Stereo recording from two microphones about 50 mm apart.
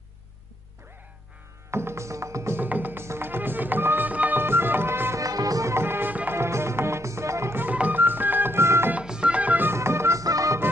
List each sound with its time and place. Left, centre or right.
1.7 s music: right
2.5 s music: right
3.0 s music: right
4.1 s music: right
4.4 s music: right
5.1 s music: right
5.9 s music: right
6.3 s music: right
7.7 s music: right
8.0 s music: right
8.5 s music: right
9.0 s music: centre
9.8 s music: right